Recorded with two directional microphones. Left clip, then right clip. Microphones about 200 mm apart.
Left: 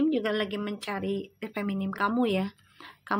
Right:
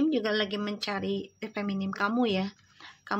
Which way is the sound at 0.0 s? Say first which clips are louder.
Even; 5° left (ahead or behind).